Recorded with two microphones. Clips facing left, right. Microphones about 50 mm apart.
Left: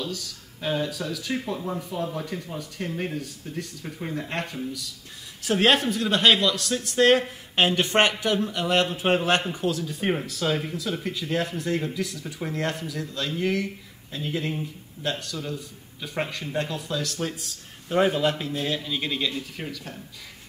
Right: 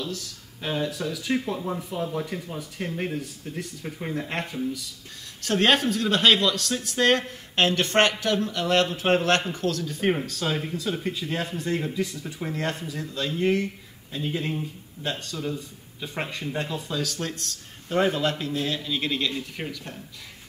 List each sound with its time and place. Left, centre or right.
0.0 s speech: centre
5.4 s speech: centre
9.9 s speech: centre
12.4 s speech: centre
12.7 s speech: right
13.0 s speech: centre
13.4 s speech: right
14.1 s speech: centre
19.3 s speech: centre